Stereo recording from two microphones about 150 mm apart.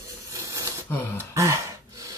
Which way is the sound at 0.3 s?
20° right (ahead or behind).